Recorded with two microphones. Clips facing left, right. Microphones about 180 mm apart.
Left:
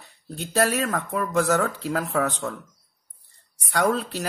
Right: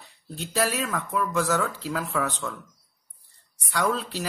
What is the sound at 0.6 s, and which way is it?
Speech, 50° left (ahead or behind).